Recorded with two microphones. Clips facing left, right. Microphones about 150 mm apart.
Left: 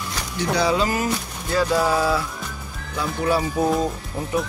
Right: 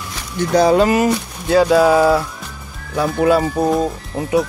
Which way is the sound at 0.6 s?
50° right (ahead or behind).